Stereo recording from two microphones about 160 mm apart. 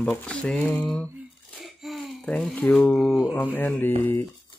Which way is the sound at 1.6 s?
Centre (ahead or behind).